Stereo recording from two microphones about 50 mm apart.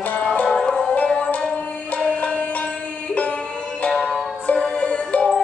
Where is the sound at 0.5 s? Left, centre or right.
Centre.